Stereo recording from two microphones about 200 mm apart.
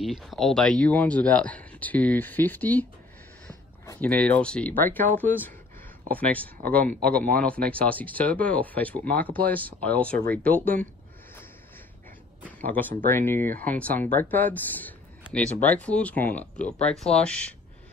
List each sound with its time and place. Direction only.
0.0 s speech: centre (ahead or behind); by 4.1 s 15° left (ahead or behind)
4.1 s speech: 5° left (ahead or behind)
12.5 s speech: 10° left (ahead or behind)